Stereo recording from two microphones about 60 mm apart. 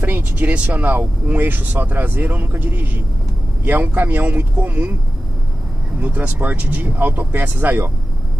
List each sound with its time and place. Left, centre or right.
0.0 s speech: right
5.9 s speech: right